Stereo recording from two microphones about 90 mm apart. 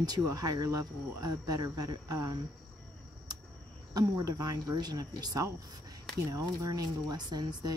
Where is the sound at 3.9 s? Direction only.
45° right (ahead or behind).